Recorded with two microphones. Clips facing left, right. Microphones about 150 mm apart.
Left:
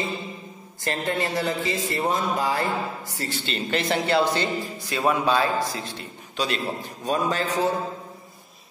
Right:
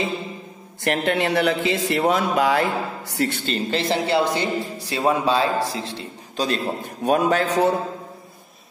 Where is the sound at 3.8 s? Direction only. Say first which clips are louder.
Right 1 dB; 25° right (ahead or behind).